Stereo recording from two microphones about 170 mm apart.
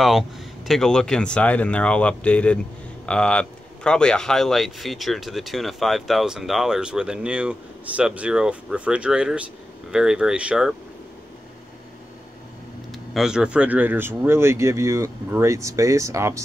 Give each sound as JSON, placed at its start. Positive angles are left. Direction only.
{"t": 0.7, "sound": "speech", "side_deg": 5}
{"t": 13.1, "sound": "speech", "side_deg": -5}